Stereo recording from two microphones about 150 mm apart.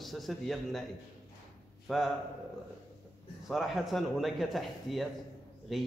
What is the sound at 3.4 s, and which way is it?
A man's voice, centre (ahead or behind).